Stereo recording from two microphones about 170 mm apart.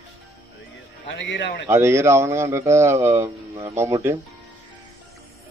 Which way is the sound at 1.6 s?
15° right (ahead or behind).